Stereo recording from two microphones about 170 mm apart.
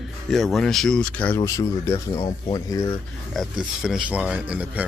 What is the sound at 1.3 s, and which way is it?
Speech, 20° left (ahead or behind).